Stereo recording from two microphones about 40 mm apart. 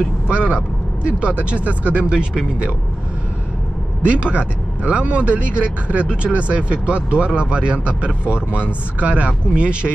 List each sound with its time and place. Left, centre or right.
0.3 s speech: right
4.0 s speech: right